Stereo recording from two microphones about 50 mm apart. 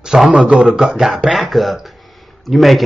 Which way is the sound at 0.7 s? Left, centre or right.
Centre.